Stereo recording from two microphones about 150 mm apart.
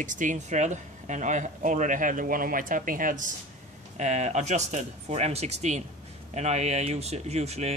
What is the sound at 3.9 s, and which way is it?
Speech, 50° right (ahead or behind).